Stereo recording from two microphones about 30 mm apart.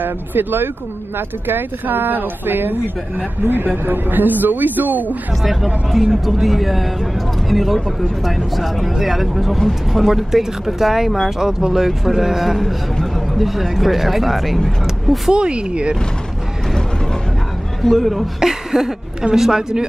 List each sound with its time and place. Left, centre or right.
0.0 s speech: right
1.9 s speech: right
3.6 s speech: right
5.4 s speech: centre
9.6 s speech: centre
10.0 s speech: centre
15.3 s speech: right
17.8 s speech: centre
18.4 s a sound: centre
19.3 s speech: centre